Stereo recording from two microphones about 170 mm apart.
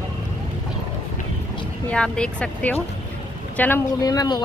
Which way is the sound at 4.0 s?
20° left (ahead or behind).